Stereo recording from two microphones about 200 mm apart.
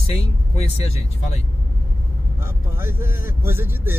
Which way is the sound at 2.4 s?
10° right (ahead or behind).